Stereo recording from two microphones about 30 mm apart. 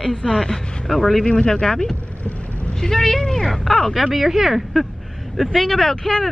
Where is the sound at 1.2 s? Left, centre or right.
Left.